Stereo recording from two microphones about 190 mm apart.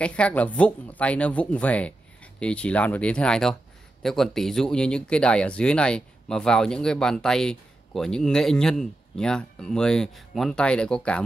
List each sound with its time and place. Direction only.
0.0 s speech: 5° left (ahead or behind)